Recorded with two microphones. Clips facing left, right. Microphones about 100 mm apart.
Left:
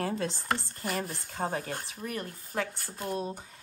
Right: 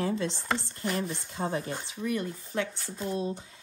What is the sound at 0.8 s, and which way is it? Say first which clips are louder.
Speech: right 4 dB; centre (ahead or behind).